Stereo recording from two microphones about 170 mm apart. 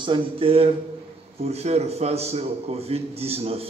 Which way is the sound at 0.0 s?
30° right (ahead or behind).